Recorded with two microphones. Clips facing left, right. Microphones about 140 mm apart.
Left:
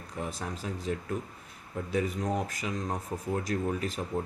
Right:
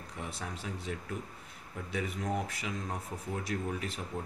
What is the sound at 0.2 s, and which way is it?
Speech, 40° left (ahead or behind).